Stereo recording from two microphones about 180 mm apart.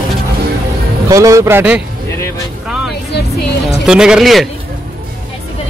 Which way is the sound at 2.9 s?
65° left (ahead or behind).